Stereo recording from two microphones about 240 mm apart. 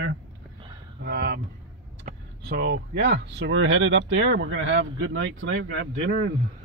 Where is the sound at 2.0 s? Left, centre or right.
Right.